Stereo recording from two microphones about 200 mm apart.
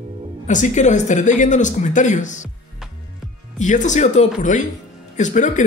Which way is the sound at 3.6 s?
40° left (ahead or behind).